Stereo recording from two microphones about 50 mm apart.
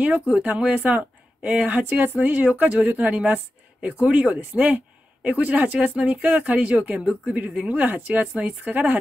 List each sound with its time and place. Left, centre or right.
0.0 s speech: right